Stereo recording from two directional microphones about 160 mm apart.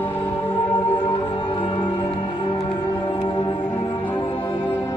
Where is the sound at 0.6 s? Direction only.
20° left (ahead or behind).